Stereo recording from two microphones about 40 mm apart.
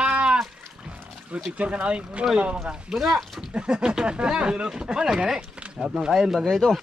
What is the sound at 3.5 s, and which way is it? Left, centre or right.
Speech, right.